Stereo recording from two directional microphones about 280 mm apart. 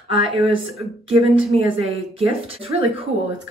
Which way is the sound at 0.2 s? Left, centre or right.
Centre.